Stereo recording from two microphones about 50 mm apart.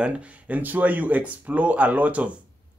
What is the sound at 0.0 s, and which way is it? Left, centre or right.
Speech, right.